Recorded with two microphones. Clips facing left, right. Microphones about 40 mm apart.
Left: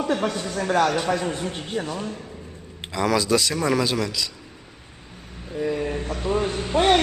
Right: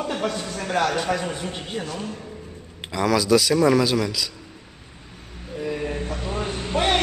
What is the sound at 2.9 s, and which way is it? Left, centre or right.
A man's voice, centre.